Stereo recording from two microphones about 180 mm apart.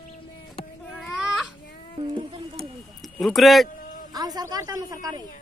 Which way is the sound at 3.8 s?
50° left (ahead or behind).